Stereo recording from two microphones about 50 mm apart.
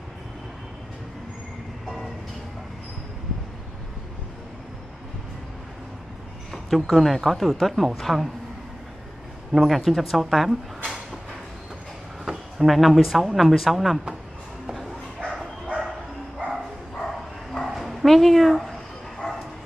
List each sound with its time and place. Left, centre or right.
6.5 s speech: centre
9.5 s speech: centre
12.3 s speech: centre
16.9 s bow-wow: centre
17.6 s dog: centre